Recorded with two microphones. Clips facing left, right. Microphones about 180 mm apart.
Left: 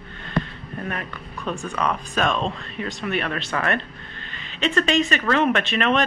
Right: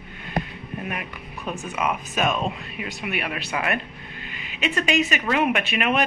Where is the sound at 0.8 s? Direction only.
10° right (ahead or behind).